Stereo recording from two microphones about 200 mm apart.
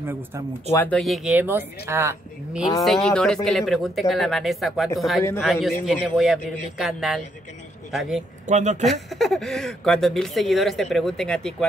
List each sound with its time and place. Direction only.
0.7 s speech: 5° left (ahead or behind); by 2.6 s 10° right (ahead or behind)
2.8 s speech: 5° left (ahead or behind)
8.5 s speech: 35° right (ahead or behind)
9.1 s speech: centre (ahead or behind)